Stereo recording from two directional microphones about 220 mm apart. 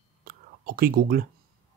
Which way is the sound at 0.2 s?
40° right (ahead or behind).